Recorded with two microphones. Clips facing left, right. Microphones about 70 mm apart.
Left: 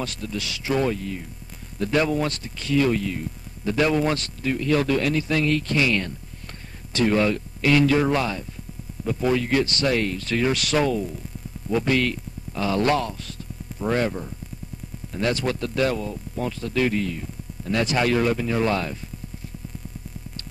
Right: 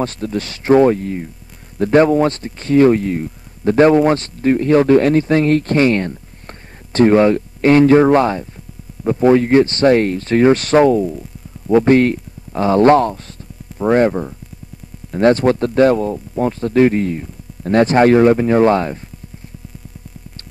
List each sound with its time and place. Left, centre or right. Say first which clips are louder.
0.0 s speech: right 9 dB; right